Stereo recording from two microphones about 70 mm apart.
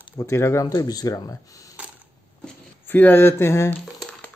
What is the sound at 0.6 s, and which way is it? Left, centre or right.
Speech, left.